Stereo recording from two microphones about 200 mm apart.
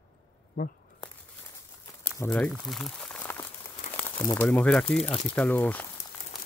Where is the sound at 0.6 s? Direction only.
40° left (ahead or behind).